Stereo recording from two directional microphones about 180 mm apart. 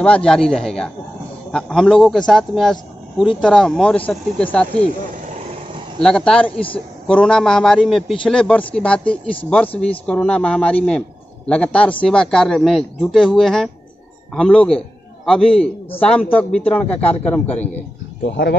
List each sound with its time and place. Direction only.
0.0 s speech: 5° left (ahead or behind)
5.9 s a man's voice: 5° left (ahead or behind)
18.2 s speech: 65° left (ahead or behind)